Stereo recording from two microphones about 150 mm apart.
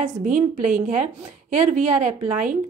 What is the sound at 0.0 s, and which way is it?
A woman's voice, 55° right (ahead or behind).